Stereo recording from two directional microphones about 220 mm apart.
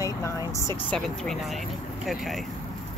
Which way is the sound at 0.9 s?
Centre (ahead or behind).